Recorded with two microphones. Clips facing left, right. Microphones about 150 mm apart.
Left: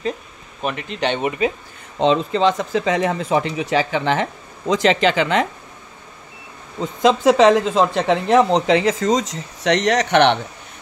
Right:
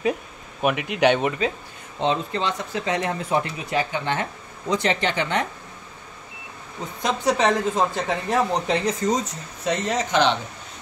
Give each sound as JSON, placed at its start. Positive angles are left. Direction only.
{"t": 0.6, "sound": "speech", "side_deg": -10}
{"t": 2.0, "sound": "speech", "side_deg": 90}
{"t": 6.8, "sound": "speech", "side_deg": 90}